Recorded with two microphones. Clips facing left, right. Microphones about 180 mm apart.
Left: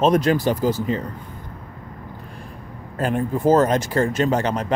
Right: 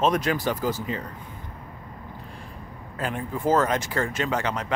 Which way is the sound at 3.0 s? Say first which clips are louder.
Left 7 dB; 40° left (ahead or behind).